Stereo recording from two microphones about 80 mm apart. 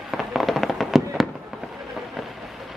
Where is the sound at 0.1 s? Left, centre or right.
Centre.